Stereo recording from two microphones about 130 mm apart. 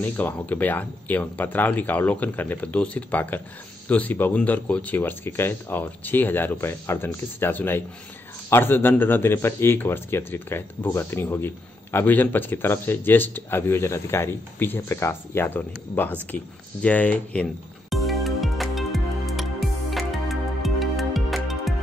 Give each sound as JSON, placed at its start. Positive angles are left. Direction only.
{"t": 0.0, "sound": "a man's voice", "side_deg": 15}
{"t": 17.8, "sound": "music", "side_deg": 0}